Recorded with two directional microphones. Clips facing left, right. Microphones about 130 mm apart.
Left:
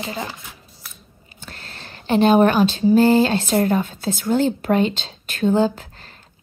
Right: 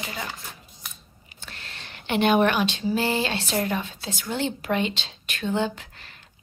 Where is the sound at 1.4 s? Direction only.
40° left (ahead or behind).